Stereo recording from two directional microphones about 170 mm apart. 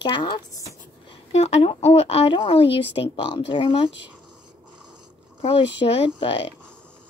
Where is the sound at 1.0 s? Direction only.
40° left (ahead or behind).